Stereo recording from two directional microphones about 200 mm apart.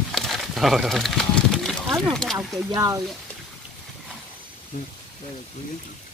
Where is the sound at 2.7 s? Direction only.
15° right (ahead or behind).